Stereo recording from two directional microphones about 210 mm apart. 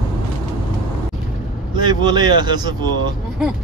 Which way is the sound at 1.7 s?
20° right (ahead or behind).